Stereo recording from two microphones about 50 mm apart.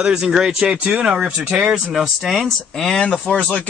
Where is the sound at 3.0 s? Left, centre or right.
Left.